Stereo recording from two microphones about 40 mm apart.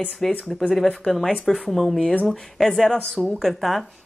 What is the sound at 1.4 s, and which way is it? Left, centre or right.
Speech, centre.